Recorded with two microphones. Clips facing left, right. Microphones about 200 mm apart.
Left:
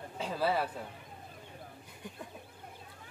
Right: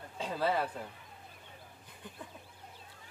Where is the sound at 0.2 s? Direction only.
10° left (ahead or behind).